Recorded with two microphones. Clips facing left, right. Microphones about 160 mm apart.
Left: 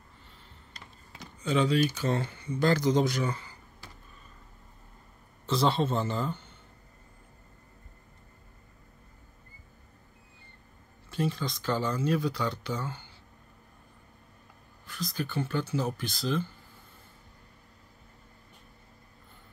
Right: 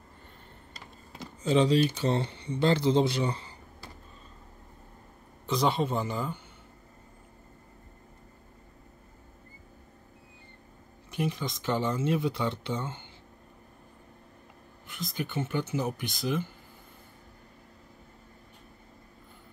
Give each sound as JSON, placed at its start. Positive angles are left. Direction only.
{"t": 0.7, "sound": "speech", "side_deg": -35}
{"t": 5.5, "sound": "speech", "side_deg": -15}
{"t": 11.1, "sound": "speech", "side_deg": -20}
{"t": 14.9, "sound": "speech", "side_deg": -20}